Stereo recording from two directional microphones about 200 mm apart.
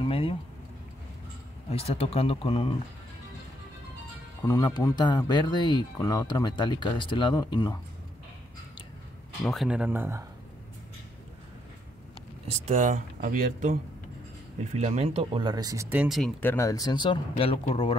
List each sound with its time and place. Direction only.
0.0 s speech: 25° left (ahead or behind)
1.7 s speech: 30° left (ahead or behind)
4.5 s speech: 20° left (ahead or behind)
9.4 s speech: centre (ahead or behind)
12.4 s speech: 35° right (ahead or behind); by 16.3 s 5° right (ahead or behind)
16.3 s speech: 10° left (ahead or behind); by 17.9 s 30° left (ahead or behind)